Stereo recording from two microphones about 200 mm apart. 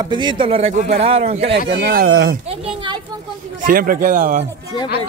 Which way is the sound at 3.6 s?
45° right (ahead or behind).